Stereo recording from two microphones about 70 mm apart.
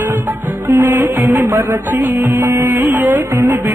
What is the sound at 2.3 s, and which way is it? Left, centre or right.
Music, right.